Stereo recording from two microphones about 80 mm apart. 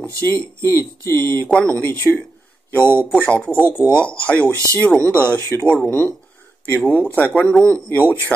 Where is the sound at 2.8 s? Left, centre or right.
Right.